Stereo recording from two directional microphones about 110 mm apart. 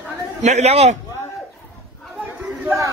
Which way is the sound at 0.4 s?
90° right.